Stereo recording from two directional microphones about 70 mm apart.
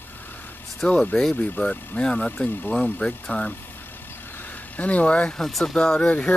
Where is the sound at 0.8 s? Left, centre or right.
Left.